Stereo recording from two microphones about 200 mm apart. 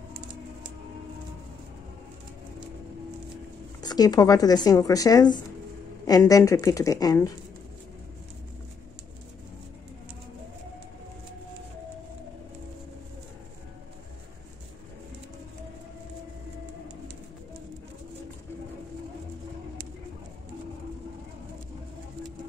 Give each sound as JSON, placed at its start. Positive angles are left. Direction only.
{"t": 3.8, "sound": "a woman's voice", "side_deg": 20}